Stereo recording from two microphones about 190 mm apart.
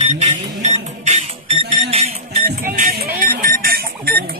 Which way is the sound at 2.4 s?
45° right (ahead or behind).